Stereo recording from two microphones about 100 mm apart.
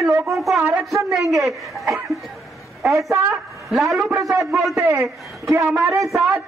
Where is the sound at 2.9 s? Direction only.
30° right (ahead or behind).